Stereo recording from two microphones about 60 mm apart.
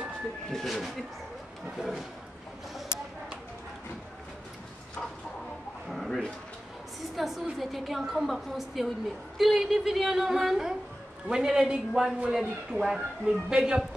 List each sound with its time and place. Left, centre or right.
0.5 s a woman's voice: centre
5.9 s a sound: centre
7.2 s a woman's voice: centre